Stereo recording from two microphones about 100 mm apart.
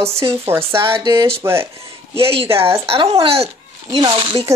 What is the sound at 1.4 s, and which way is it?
Speech, 25° right (ahead or behind).